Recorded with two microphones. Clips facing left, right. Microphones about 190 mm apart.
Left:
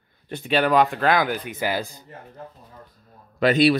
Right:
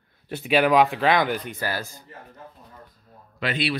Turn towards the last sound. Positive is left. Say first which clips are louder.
# left 10 dB
turn(degrees=40)  # may be behind; listen again after turning